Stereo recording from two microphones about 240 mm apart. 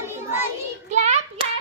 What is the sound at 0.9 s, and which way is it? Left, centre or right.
Hands, right.